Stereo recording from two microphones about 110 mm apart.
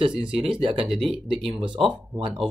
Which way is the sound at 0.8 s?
5° right (ahead or behind).